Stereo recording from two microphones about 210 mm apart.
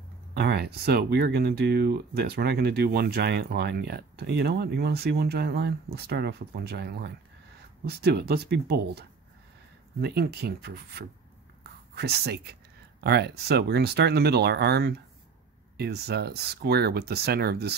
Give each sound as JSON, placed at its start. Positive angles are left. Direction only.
{"t": 0.3, "sound": "speech", "side_deg": -50}